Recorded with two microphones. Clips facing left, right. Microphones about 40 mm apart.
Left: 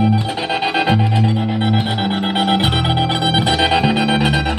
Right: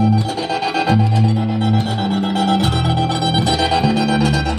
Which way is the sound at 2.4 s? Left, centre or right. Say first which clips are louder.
Left 2 dB; left.